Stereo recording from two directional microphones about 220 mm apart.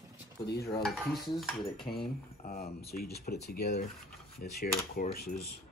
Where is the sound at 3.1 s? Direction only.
40° left (ahead or behind).